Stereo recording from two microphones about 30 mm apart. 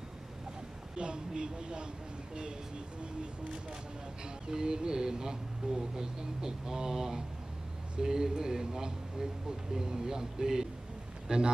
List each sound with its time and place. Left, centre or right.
0.9 s a woman's voice: right
4.5 s a man's voice: right